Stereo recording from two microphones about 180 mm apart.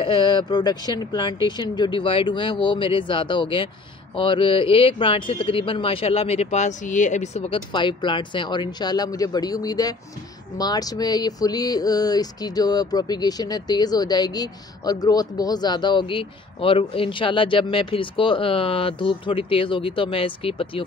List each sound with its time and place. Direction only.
0.0 s speech: 25° left (ahead or behind)